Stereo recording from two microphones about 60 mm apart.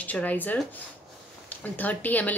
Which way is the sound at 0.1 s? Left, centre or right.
Left.